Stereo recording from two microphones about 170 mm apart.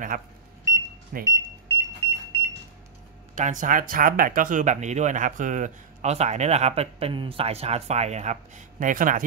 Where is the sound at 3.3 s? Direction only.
50° right (ahead or behind).